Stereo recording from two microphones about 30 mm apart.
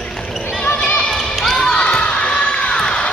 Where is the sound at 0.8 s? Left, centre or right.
Left.